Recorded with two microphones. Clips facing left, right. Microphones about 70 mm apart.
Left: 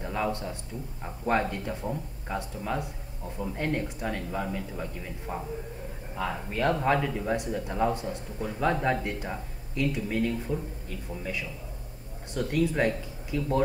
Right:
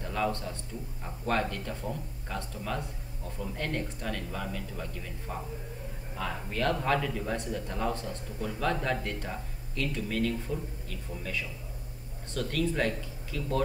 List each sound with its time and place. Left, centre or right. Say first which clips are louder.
0.0 s a man's voice: left 1 dB; centre